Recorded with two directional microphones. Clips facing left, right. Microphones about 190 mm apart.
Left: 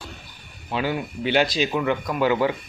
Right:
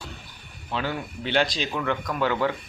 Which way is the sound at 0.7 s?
10° left (ahead or behind).